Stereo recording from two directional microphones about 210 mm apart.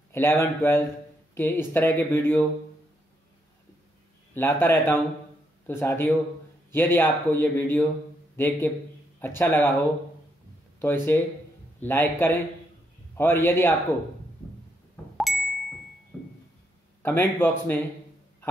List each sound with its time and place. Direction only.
0.1 s speech: 10° left (ahead or behind)
4.3 s speech: 10° left (ahead or behind)
15.1 s ding: centre (ahead or behind)
17.0 s speech: 10° left (ahead or behind)